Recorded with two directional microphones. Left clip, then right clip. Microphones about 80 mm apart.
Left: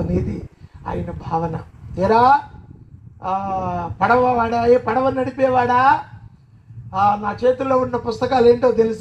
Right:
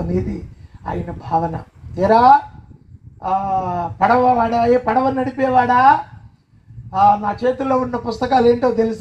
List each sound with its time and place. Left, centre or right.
0.8 s a man's voice: left